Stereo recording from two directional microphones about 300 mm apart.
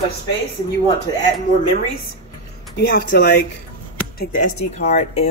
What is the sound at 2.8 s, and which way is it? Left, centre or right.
Speech, left.